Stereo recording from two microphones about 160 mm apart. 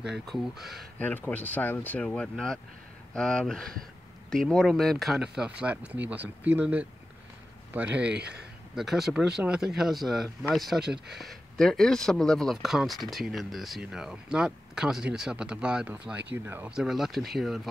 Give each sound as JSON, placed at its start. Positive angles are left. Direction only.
{"t": 0.0, "sound": "speech", "side_deg": 0}
{"t": 0.9, "sound": "speech", "side_deg": 10}
{"t": 8.1, "sound": "speech", "side_deg": -90}
{"t": 8.7, "sound": "speech", "side_deg": 0}